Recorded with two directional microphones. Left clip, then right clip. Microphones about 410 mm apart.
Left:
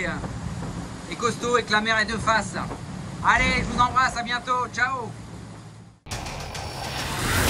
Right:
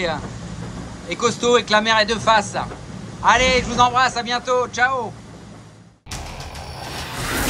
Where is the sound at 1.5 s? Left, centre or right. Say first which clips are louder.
Right 4 dB; centre.